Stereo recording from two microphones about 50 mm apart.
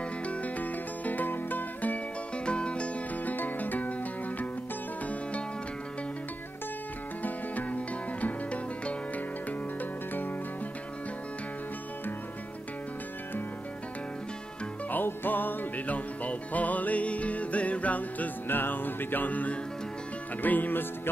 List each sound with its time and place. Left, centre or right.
0.3 s music: left
2.4 s music: left
7.2 s music: left
14.9 s music: left